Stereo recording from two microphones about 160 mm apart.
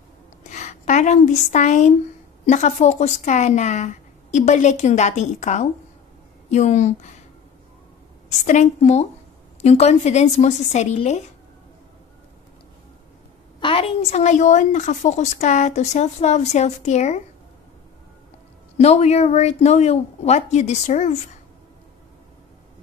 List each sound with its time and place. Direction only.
0.4 s a woman's voice: 50° left (ahead or behind)
8.5 s speech: 45° left (ahead or behind)
13.6 s a sound: 35° left (ahead or behind)
14.1 s speech: 50° left (ahead or behind)
18.8 s speech: 45° left (ahead or behind)